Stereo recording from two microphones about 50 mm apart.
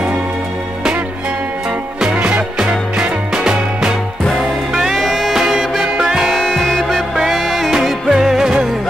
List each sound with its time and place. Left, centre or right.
2.2 s music: right
4.9 s music: centre
6.4 s music: centre